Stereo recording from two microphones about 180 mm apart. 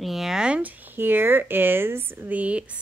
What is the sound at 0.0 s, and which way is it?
Speech, centre (ahead or behind).